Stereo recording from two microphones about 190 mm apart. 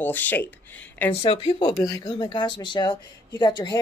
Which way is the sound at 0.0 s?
10° left (ahead or behind).